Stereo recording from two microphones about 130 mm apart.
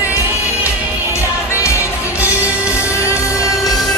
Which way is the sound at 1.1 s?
20° left (ahead or behind).